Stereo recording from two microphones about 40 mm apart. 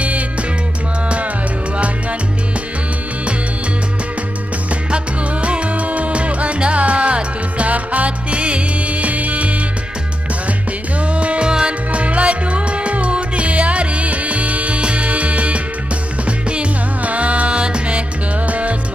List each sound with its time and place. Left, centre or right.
0.0 s music: right
4.9 s music: right
11.0 s music: right
11.9 s music: right